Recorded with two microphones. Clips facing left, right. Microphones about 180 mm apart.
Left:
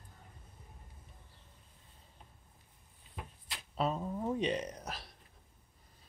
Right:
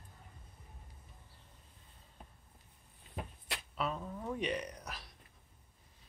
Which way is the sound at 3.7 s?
30° left (ahead or behind).